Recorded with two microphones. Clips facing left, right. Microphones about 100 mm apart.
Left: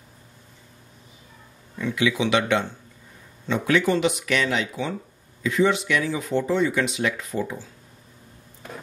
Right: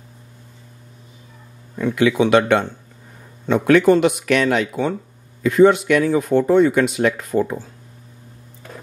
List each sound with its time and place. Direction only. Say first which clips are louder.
1.8 s speech: right 7 dB; 50° right (ahead or behind)